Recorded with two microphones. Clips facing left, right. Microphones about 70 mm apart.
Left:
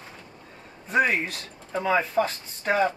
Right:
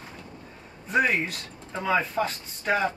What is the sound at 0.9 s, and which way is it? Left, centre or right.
Speech, left.